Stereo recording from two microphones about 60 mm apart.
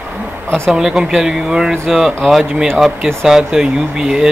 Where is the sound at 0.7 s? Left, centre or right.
Centre.